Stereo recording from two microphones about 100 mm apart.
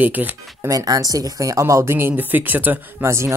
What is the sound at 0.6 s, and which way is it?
Speech, 35° right (ahead or behind).